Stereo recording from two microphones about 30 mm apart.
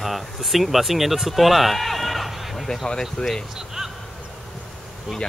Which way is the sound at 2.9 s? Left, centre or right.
Left.